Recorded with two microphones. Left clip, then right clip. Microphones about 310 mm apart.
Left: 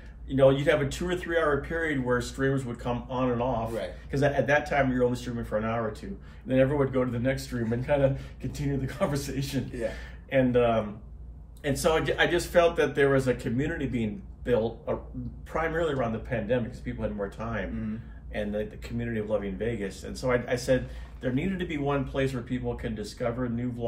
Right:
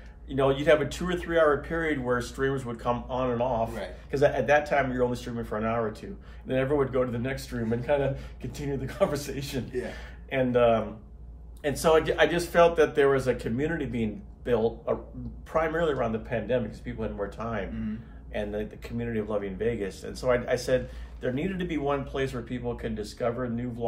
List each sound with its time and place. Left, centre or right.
0.3 s a man's voice: centre